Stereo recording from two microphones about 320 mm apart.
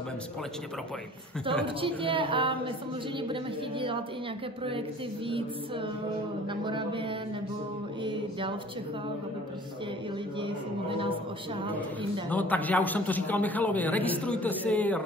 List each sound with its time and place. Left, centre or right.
1.8 s a woman's voice: centre
6.5 s a woman's voice: centre
10.4 s a woman's voice: centre
12.3 s a man's voice: centre